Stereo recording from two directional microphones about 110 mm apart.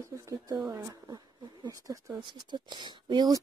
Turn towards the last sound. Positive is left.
turn(degrees=-40)  # may be behind; listen again after turning